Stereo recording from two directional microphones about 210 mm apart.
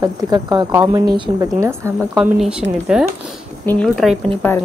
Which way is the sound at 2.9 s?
5° right (ahead or behind).